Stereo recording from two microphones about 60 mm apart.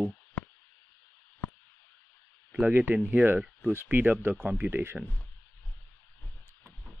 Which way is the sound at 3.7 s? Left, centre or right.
Right.